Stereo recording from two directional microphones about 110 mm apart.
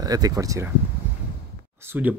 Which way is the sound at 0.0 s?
35° right (ahead or behind).